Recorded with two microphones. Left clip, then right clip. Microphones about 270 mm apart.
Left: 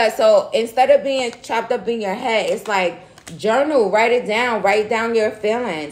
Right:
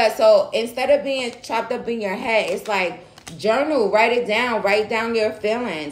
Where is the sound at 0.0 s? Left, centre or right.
Left.